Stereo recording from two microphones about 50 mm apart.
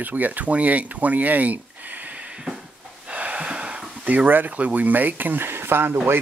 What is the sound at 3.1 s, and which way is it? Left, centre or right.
Speech, right.